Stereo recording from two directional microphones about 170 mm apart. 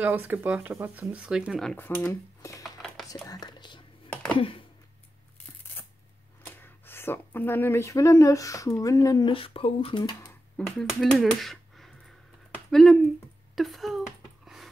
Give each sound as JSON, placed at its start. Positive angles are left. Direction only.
{"t": 0.0, "sound": "speech", "side_deg": -10}
{"t": 1.8, "sound": "speech", "side_deg": 15}
{"t": 2.6, "sound": "music", "side_deg": 0}
{"t": 3.3, "sound": "whispering", "side_deg": 25}
{"t": 4.4, "sound": "a sound", "side_deg": 30}
{"t": 6.4, "sound": "speech", "side_deg": 10}
{"t": 9.3, "sound": "speech", "side_deg": 35}
{"t": 10.8, "sound": "speech", "side_deg": 0}
{"t": 12.4, "sound": "a sound", "side_deg": 5}